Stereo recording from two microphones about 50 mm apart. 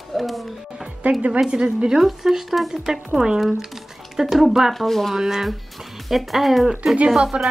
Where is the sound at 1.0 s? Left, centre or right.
Right; by 5.1 s centre.